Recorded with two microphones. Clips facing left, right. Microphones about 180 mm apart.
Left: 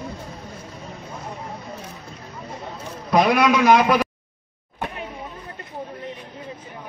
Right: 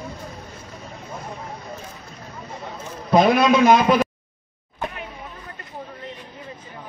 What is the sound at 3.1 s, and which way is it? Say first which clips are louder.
A man's voice: right 2 dB; 25° right (ahead or behind).